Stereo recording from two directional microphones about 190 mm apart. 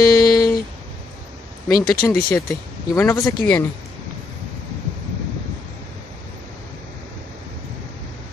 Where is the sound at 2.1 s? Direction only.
10° left (ahead or behind).